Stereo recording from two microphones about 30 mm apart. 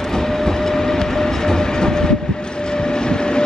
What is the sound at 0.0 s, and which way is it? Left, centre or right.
Train, centre.